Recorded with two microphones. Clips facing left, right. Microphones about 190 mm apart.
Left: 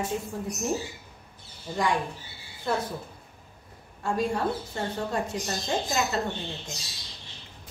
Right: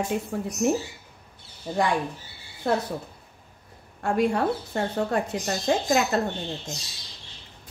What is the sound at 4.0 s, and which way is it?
A woman's voice, 65° right (ahead or behind).